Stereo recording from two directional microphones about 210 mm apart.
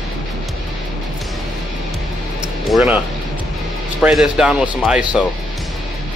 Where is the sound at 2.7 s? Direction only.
Centre (ahead or behind).